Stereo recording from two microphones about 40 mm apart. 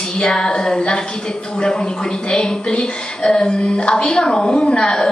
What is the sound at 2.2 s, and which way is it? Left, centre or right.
Speech, left.